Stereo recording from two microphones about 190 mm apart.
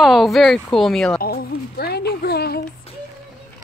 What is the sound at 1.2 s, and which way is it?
Speech, 55° left (ahead or behind).